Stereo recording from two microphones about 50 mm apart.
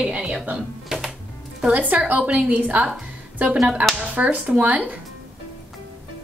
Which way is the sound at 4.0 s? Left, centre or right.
Right.